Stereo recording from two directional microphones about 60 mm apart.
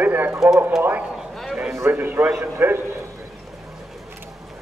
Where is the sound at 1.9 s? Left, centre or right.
Right.